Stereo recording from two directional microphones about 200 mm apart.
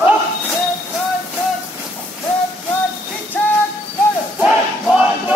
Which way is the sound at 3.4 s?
5° left (ahead or behind).